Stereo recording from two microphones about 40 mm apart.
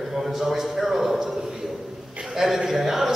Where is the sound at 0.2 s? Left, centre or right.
Centre.